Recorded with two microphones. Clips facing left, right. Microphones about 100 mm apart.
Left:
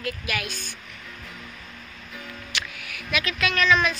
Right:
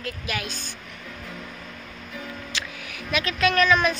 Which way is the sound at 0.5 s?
50° left (ahead or behind).